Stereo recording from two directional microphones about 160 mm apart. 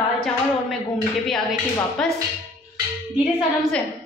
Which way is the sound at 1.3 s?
Centre (ahead or behind).